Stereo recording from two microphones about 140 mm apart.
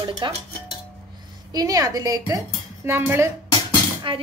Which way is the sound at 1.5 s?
25° right (ahead or behind).